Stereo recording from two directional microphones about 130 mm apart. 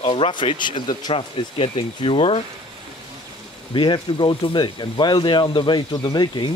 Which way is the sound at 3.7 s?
40° left (ahead or behind).